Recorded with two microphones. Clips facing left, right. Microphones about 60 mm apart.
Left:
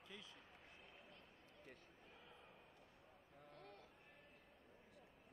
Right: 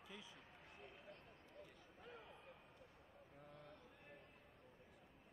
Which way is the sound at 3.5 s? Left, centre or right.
Left.